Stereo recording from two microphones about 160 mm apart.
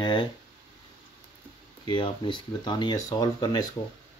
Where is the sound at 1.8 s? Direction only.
30° left (ahead or behind).